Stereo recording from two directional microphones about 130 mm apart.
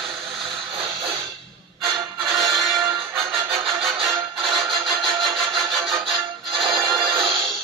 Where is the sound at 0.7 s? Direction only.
25° right (ahead or behind).